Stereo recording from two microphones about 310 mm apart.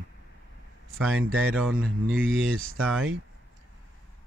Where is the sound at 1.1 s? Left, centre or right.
Right.